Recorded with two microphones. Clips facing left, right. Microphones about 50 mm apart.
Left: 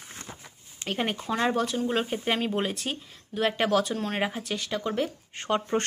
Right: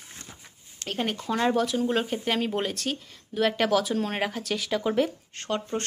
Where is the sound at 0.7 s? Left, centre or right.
Left.